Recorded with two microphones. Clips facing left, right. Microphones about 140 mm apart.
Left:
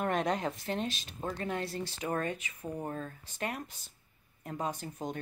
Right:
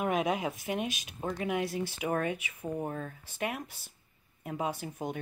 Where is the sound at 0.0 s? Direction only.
5° right (ahead or behind).